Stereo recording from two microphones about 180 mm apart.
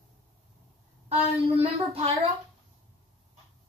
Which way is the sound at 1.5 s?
35° right (ahead or behind).